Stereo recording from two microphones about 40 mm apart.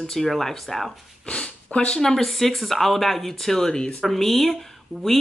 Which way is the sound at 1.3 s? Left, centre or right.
Left.